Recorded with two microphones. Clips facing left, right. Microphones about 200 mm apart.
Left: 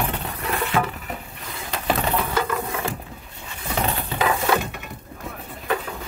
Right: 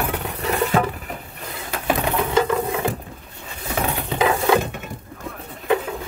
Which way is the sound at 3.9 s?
15° right (ahead or behind).